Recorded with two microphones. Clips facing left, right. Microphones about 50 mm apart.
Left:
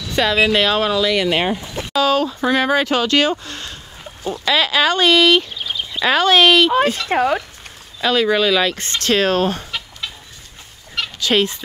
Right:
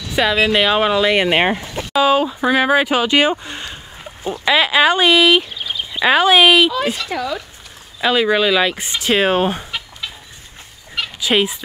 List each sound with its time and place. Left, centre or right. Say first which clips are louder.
0.1 s speech: even; centre; by 1.8 s right
2.0 s speech: right 2 dB; centre
7.1 s speech: left 6 dB; left
8.0 s speech: right 1 dB; centre
11.0 s fowl: even; centre